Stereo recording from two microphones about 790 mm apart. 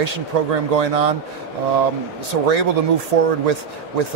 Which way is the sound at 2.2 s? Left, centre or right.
Right.